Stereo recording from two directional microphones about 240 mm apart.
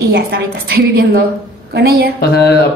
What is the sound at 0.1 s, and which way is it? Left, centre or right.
A woman's voice, right.